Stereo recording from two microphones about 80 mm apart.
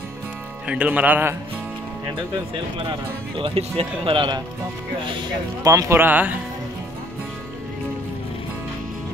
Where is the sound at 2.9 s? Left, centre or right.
Right.